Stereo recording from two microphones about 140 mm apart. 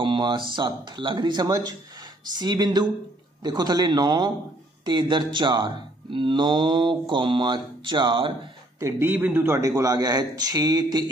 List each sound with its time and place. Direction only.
0.0 s a sound: 35° right (ahead or behind)
0.5 s speech: 35° right (ahead or behind)
8.7 s speech: 20° right (ahead or behind)